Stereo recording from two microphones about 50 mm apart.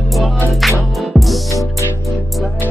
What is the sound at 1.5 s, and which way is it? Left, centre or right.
Music, left.